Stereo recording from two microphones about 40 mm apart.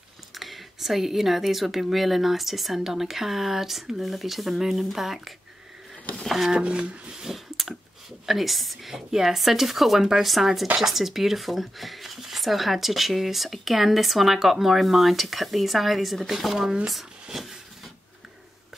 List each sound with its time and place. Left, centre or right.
0.3 s speech: centre
6.5 s speech: right
7.2 s clicking: centre
8.3 s speech: centre